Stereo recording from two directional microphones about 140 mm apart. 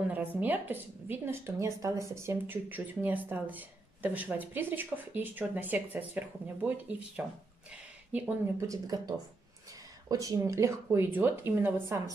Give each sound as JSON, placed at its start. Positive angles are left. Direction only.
{"t": 0.4, "sound": "a woman's voice", "side_deg": -15}
{"t": 8.5, "sound": "speech", "side_deg": -25}